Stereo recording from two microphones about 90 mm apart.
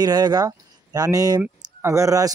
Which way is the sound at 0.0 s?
50° right (ahead or behind).